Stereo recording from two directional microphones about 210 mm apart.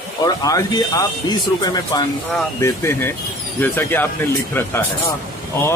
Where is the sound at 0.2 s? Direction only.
15° left (ahead or behind).